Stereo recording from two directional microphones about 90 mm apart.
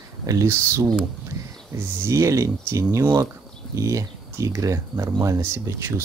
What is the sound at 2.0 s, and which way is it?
Speech, 35° right (ahead or behind).